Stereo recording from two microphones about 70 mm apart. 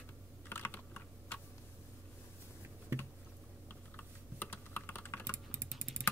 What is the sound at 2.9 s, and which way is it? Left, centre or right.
Computer keyboard, right.